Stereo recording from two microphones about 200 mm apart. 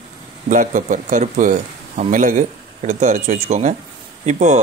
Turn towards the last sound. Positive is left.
turn(degrees=-35)  # may be behind; listen again after turning